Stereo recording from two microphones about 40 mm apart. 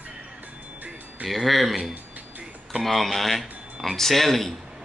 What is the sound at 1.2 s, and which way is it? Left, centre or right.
Speech, centre.